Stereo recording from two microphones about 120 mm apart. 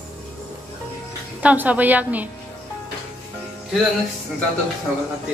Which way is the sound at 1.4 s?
10° right (ahead or behind).